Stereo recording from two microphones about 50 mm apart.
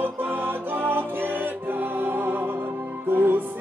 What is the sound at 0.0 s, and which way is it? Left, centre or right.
Music, right.